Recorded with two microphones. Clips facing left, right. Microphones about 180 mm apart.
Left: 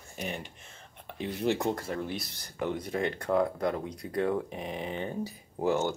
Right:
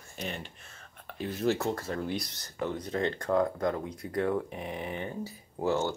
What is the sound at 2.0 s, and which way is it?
Speech, centre (ahead or behind).